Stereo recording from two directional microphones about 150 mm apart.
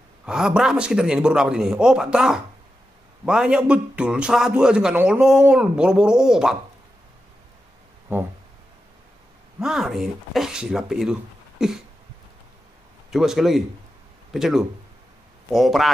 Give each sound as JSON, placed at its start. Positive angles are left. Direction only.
{"t": 0.2, "sound": "a man's voice", "side_deg": -5}
{"t": 8.1, "sound": "a sound", "side_deg": -15}
{"t": 9.6, "sound": "a man's voice", "side_deg": -5}
{"t": 13.1, "sound": "a man's voice", "side_deg": 0}